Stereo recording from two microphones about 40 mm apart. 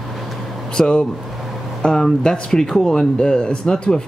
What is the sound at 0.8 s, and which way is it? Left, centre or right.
Speech, centre.